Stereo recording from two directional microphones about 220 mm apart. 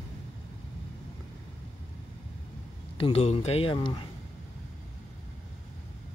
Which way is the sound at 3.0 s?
30° left (ahead or behind).